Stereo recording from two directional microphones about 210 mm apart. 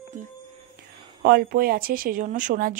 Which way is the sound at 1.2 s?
45° right (ahead or behind).